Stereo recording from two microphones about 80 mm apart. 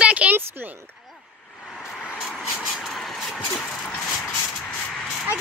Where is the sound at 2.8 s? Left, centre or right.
Centre.